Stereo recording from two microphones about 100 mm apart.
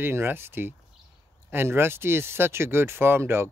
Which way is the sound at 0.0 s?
20° right (ahead or behind).